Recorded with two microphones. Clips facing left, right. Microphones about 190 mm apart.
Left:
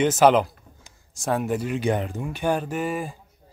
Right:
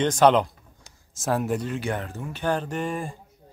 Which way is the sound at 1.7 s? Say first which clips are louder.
Left 5 dB; 15° left (ahead or behind).